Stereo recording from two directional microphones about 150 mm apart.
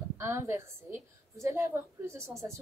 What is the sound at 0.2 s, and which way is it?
A woman's voice, 20° right (ahead or behind).